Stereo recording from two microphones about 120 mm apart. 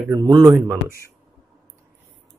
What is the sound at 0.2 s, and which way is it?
Speech, 35° right (ahead or behind).